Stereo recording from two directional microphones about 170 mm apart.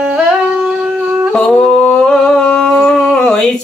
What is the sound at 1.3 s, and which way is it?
Humming, 5° left (ahead or behind).